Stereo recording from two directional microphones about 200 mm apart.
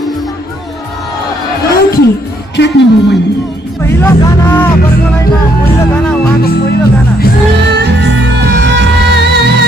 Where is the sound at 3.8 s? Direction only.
10° left (ahead or behind).